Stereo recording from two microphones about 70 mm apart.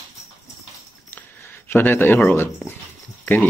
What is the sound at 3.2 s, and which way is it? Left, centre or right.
Goat, left.